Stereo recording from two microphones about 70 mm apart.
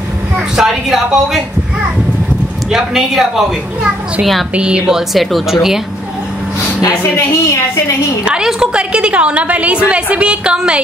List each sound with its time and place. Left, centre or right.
0.6 s a woman's voice: centre
2.7 s a woman's voice: centre
7.2 s a woman's voice: left
8.3 s a woman's voice: centre